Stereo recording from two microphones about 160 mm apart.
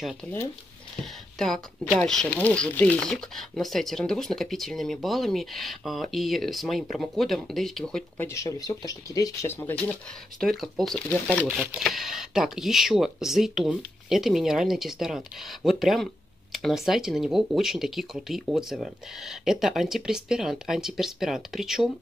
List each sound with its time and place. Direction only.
0.0 s speech: centre (ahead or behind)
2.0 s speech: 5° left (ahead or behind)
8.3 s speech: 20° left (ahead or behind)
10.4 s speech: centre (ahead or behind)